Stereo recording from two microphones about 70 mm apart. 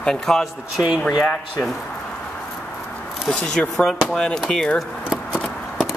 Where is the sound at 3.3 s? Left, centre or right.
Centre.